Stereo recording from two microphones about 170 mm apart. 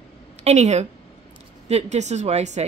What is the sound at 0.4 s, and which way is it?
A woman's voice, 40° right (ahead or behind).